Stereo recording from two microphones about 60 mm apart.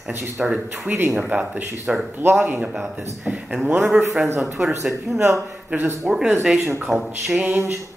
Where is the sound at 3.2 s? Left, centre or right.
Centre.